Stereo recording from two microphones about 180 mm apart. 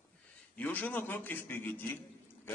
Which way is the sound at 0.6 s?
10° left (ahead or behind).